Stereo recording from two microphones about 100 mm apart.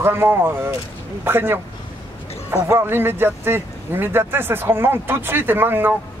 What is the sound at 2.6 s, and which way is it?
Speech, 25° right (ahead or behind).